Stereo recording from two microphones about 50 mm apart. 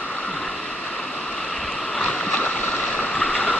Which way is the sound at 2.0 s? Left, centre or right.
Centre.